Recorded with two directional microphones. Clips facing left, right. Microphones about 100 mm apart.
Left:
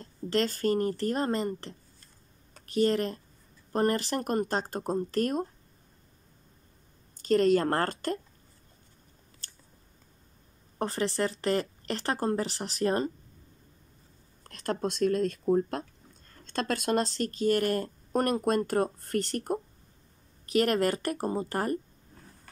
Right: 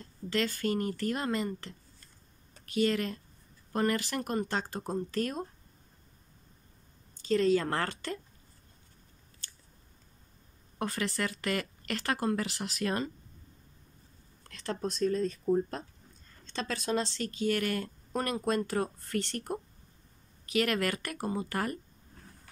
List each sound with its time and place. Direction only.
0.0 s speech: 40° left (ahead or behind)
4.2 s speech: 50° left (ahead or behind)
7.2 s speech: 55° left (ahead or behind)
10.8 s speech: 35° left (ahead or behind)
14.5 s speech: 55° left (ahead or behind)
14.8 s speech: 70° left (ahead or behind)
16.4 s speech: 60° left (ahead or behind); by 21.7 s 35° left (ahead or behind)